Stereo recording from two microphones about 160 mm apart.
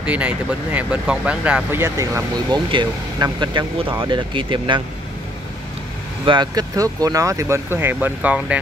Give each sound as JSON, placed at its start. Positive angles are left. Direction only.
{"t": 0.0, "sound": "speech", "side_deg": -10}
{"t": 2.7, "sound": "speech", "side_deg": -30}
{"t": 6.2, "sound": "speech", "side_deg": -30}